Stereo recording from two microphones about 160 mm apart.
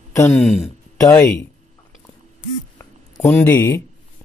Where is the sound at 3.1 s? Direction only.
Centre (ahead or behind).